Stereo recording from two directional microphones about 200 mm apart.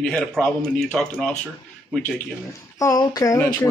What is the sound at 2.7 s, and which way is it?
Speech, 20° left (ahead or behind).